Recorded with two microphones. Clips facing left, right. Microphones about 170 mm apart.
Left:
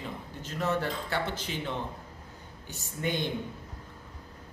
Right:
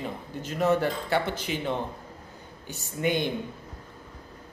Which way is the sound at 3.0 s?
10° right (ahead or behind).